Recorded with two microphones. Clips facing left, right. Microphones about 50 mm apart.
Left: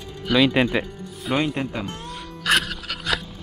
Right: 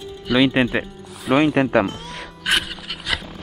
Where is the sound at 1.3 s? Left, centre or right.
Right.